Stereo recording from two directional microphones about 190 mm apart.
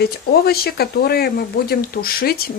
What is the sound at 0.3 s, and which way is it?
Speech, 55° left (ahead or behind).